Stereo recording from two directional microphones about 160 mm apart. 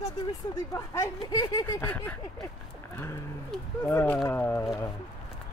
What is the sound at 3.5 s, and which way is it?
Speech, 10° left (ahead or behind).